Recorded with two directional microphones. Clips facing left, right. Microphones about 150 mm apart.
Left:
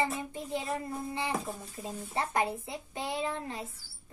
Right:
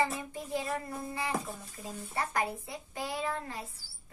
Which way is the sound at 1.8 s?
25° left (ahead or behind).